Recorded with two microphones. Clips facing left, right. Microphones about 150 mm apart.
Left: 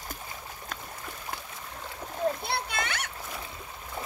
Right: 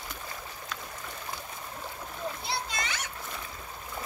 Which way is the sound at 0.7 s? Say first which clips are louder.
Even; 50° left (ahead or behind).